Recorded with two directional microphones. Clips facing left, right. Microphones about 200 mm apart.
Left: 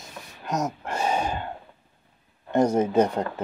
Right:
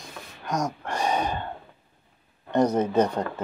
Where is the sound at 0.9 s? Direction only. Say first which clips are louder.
Even; 5° left (ahead or behind).